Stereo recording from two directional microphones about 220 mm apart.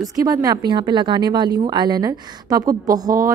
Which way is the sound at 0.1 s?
15° right (ahead or behind).